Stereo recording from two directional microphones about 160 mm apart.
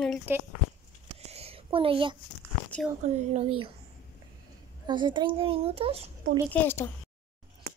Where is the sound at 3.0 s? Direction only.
40° right (ahead or behind).